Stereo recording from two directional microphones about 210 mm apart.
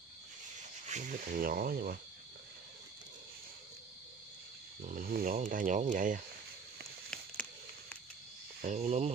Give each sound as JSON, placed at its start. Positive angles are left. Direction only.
{"t": 0.8, "sound": "speech", "side_deg": -35}
{"t": 4.8, "sound": "speech", "side_deg": -40}
{"t": 8.5, "sound": "speech", "side_deg": -35}